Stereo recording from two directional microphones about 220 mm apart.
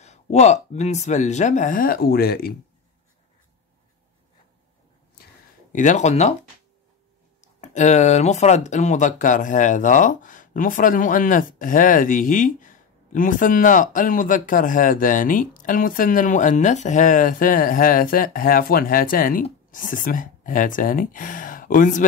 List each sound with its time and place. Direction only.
0.0 s speech: 30° left (ahead or behind)
5.7 s speech: 35° left (ahead or behind)
7.6 s speech: 30° left (ahead or behind)